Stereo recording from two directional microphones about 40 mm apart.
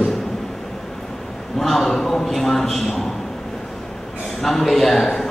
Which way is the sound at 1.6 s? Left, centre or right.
Centre.